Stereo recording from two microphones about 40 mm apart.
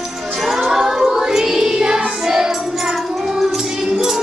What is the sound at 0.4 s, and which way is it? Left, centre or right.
Music, centre.